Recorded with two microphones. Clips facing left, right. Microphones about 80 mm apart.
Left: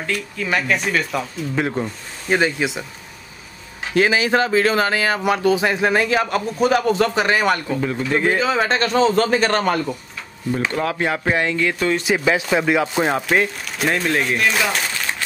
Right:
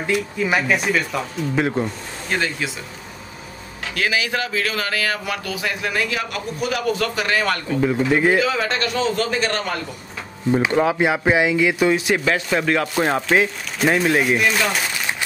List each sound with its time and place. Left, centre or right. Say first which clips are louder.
0.0 s speech: right 4 dB; centre
2.2 s speech: left 5 dB; centre
3.9 s speech: left 6 dB; left
8.0 s speech: right 2 dB; centre
8.4 s a man's voice: left 2 dB; left
10.5 s speech: right 4 dB; centre
12.0 s speech: left 1 dB; centre
14.7 s a sound: even; centre